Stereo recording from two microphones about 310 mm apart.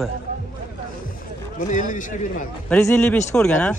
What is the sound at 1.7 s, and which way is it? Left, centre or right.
Speech, left.